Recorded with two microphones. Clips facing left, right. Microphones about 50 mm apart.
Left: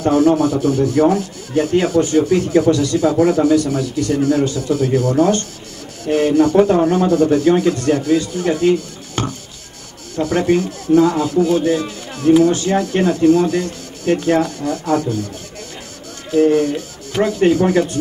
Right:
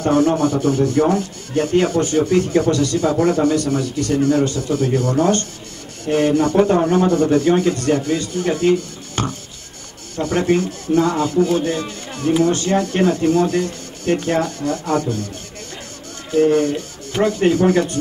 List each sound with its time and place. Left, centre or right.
0.0 s speech: centre
2.7 s speech: centre
3.0 s speech: centre
16.3 s speech: centre